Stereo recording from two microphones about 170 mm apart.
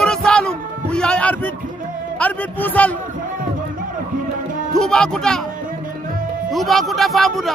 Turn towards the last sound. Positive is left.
turn(degrees=0)  # may be behind; listen again after turning